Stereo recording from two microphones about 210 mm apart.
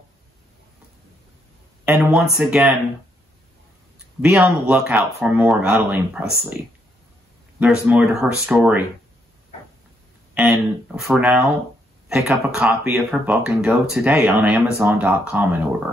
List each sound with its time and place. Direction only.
2.1 s speech: centre (ahead or behind)
4.2 s speech: 5° right (ahead or behind)
7.6 s speech: 5° right (ahead or behind)
10.3 s speech: 5° right (ahead or behind)